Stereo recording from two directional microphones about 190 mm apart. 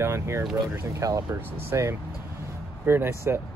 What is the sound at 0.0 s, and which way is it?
Speech, 15° right (ahead or behind).